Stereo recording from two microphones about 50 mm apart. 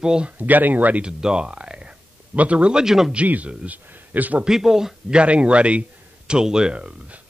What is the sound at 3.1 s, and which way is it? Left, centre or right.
A man's voice, right.